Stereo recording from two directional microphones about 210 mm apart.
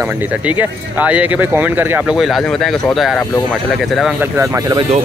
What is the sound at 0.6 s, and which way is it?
Speech, 5° right (ahead or behind).